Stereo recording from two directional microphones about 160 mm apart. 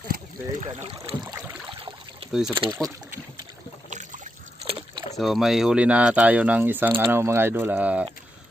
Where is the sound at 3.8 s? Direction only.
50° right (ahead or behind).